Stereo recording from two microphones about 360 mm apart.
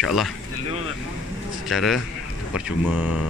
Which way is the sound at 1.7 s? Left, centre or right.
Centre.